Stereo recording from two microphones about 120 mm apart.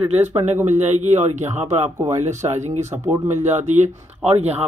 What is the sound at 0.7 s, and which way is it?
Speech, 75° right (ahead or behind).